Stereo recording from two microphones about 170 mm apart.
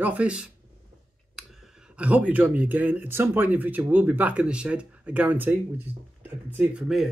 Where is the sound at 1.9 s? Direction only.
10° right (ahead or behind).